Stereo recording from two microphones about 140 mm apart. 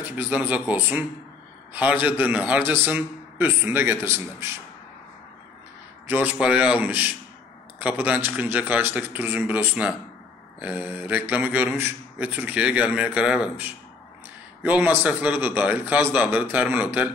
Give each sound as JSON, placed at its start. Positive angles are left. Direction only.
{"t": 0.0, "sound": "speech", "side_deg": -15}
{"t": 6.0, "sound": "a man's voice", "side_deg": -15}